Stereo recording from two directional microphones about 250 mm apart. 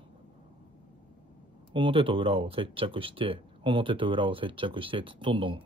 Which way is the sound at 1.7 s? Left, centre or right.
Right.